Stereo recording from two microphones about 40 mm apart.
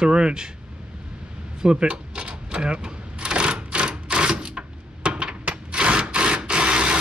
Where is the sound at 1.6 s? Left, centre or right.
Right.